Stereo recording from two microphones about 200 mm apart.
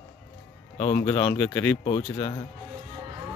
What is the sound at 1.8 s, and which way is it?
Speech, 30° left (ahead or behind).